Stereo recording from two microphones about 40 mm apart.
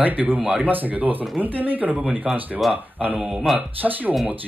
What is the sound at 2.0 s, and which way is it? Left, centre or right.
Speech, centre.